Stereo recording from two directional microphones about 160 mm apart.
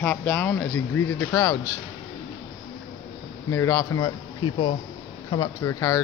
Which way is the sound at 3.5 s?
20° left (ahead or behind).